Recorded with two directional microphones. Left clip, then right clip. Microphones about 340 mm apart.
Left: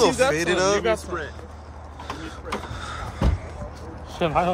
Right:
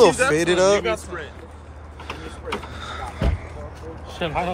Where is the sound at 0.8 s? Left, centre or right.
Left.